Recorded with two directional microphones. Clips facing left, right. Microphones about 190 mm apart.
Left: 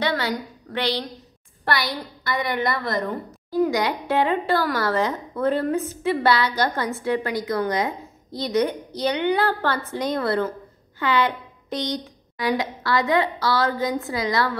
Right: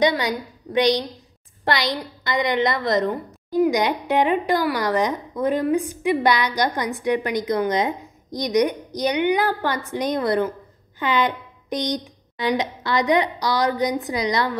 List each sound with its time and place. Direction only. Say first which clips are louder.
0.0 s a woman's voice: right 4 dB; 15° right (ahead or behind)